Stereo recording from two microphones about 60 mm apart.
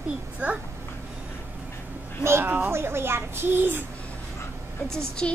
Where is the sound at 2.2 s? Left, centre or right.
Right.